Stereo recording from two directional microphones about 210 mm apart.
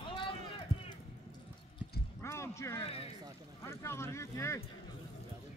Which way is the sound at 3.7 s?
10° left (ahead or behind).